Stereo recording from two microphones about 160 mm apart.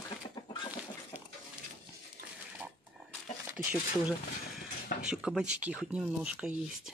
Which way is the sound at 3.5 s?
10° right (ahead or behind).